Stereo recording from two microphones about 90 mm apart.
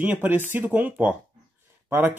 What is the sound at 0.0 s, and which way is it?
Speech, 20° right (ahead or behind).